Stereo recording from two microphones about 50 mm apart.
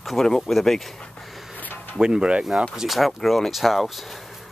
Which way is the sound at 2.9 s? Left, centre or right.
Centre.